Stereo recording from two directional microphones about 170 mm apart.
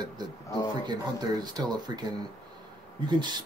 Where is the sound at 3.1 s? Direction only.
25° right (ahead or behind).